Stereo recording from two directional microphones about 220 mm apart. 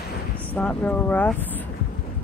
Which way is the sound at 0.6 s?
5° left (ahead or behind).